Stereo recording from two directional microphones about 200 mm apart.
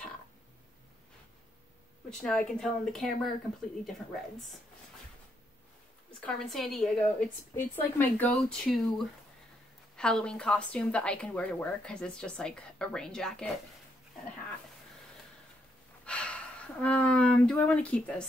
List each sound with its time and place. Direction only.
2.0 s speech: 5° left (ahead or behind)
6.2 s speech: centre (ahead or behind)
16.1 s speech: 5° left (ahead or behind)